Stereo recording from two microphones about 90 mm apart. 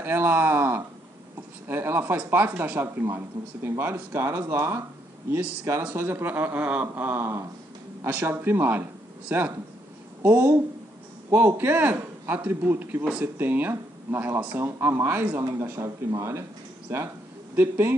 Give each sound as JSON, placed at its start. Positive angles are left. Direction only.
{"t": 0.0, "sound": "speech", "side_deg": -25}
{"t": 5.4, "sound": "speech", "side_deg": -15}